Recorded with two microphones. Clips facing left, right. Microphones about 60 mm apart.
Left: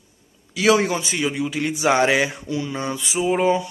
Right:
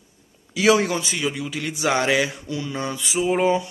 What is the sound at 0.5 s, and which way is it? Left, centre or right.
A man's voice, centre.